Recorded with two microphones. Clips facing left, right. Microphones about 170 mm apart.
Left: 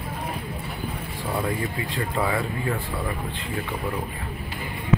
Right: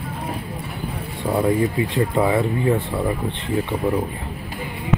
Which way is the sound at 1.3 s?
25° right (ahead or behind).